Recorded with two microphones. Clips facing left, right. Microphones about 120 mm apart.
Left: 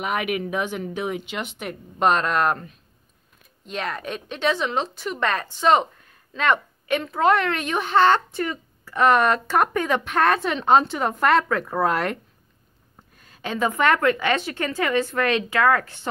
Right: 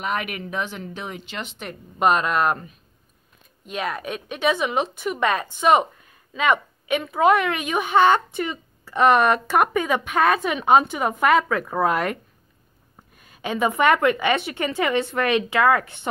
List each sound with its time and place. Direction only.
0.0 s speech: 10° left (ahead or behind)
2.0 s a woman's voice: 5° right (ahead or behind)
13.2 s a woman's voice: 10° right (ahead or behind)